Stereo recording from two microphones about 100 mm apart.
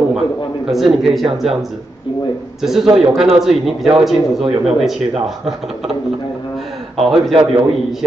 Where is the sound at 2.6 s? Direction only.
5° right (ahead or behind).